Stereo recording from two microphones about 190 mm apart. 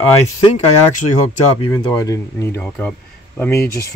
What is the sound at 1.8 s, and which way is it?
Speech, 20° left (ahead or behind).